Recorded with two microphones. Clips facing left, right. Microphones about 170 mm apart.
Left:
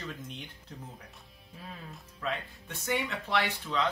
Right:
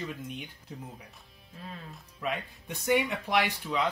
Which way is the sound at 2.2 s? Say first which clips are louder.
Right 2 dB; 15° right (ahead or behind).